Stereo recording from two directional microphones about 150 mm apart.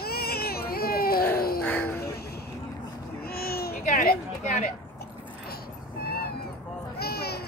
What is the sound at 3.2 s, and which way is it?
Baby cry, 90° left.